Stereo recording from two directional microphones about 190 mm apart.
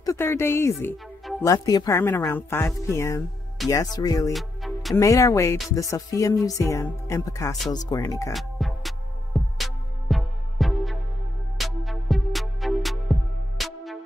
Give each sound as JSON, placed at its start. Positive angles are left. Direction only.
{"t": 0.0, "sound": "speech", "side_deg": 15}
{"t": 4.3, "sound": "music", "side_deg": 0}
{"t": 4.9, "sound": "speech", "side_deg": 15}
{"t": 8.3, "sound": "music", "side_deg": 0}